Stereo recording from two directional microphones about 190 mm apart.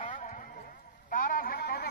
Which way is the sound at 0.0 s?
40° left (ahead or behind).